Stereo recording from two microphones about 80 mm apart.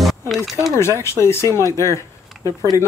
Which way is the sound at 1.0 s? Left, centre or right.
Left.